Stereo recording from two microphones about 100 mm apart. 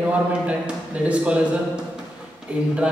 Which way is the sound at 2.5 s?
10° right (ahead or behind).